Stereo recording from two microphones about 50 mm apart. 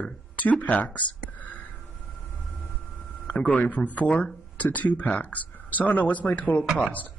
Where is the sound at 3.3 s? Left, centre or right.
Left.